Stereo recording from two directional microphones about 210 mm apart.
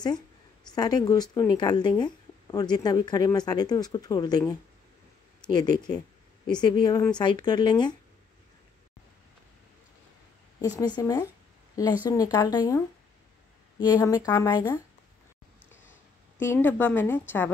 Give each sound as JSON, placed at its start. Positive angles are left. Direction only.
{"t": 0.7, "sound": "speech", "side_deg": 20}
{"t": 11.0, "sound": "speech", "side_deg": 20}
{"t": 16.3, "sound": "speech", "side_deg": 10}